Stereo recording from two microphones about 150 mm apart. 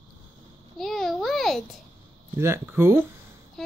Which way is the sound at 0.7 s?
Centre (ahead or behind).